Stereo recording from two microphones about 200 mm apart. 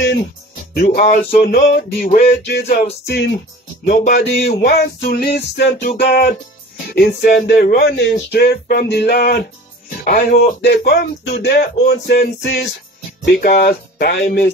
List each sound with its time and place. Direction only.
0.7 s speech: 50° left (ahead or behind)
2.3 s music: 55° left (ahead or behind)
3.8 s speech: 45° left (ahead or behind)
5.8 s speech: 50° left (ahead or behind)
6.9 s music: 60° left (ahead or behind)
7.2 s speech: 55° left (ahead or behind)